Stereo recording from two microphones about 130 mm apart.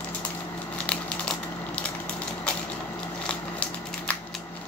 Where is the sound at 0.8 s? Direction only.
10° left (ahead or behind).